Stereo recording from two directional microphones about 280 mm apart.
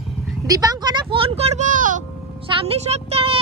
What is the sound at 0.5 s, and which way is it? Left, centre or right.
Music, centre.